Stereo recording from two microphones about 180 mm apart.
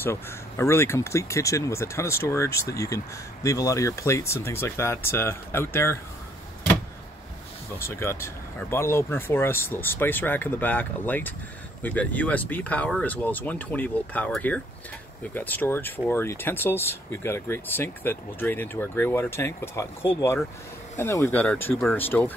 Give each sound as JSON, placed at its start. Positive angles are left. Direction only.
{"t": 0.0, "sound": "speech", "side_deg": 15}
{"t": 7.8, "sound": "speech", "side_deg": 15}